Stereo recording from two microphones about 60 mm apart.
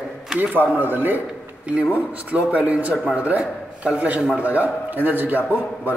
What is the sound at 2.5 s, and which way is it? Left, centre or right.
A man's voice, right.